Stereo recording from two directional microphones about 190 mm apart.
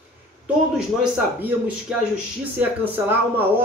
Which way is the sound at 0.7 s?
5° right (ahead or behind).